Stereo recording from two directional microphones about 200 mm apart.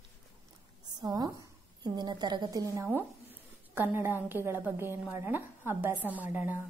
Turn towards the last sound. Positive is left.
turn(degrees=-10)  # may be behind; listen again after turning